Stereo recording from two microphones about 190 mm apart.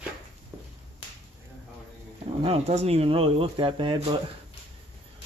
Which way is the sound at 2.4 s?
30° right (ahead or behind).